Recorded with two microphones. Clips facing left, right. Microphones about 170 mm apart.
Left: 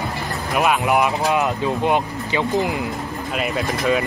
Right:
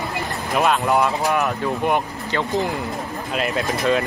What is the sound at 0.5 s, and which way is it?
Speech, 10° left (ahead or behind).